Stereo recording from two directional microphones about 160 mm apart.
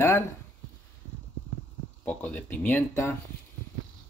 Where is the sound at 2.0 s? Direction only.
10° left (ahead or behind).